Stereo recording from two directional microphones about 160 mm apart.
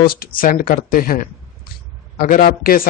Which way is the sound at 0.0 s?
65° left (ahead or behind).